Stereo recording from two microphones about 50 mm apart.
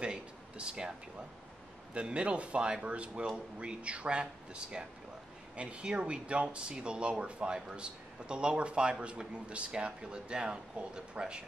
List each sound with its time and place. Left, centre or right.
0.0 s speech: centre
2.0 s speech: right